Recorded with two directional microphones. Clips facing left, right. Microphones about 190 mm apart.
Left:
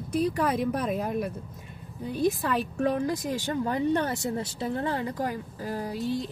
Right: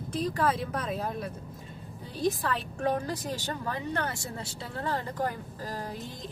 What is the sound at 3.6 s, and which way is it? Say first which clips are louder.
Speech: left 8 dB; 20° left (ahead or behind).